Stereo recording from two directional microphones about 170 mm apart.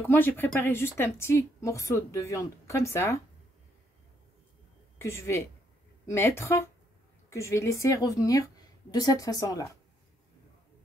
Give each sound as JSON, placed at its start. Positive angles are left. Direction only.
{"t": 0.0, "sound": "a woman's voice", "side_deg": 10}
{"t": 4.9, "sound": "a woman's voice", "side_deg": 15}